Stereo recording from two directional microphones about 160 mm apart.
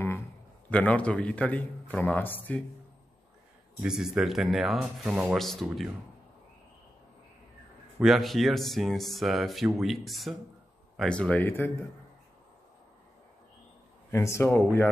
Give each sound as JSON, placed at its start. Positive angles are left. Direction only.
{"t": 0.7, "sound": "a man's voice", "side_deg": 10}
{"t": 3.8, "sound": "speech", "side_deg": -5}
{"t": 8.0, "sound": "a man's voice", "side_deg": 0}
{"t": 14.1, "sound": "a man's voice", "side_deg": 20}